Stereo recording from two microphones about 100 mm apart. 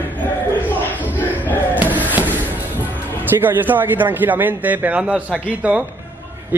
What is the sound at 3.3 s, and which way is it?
A man's voice, 20° right (ahead or behind).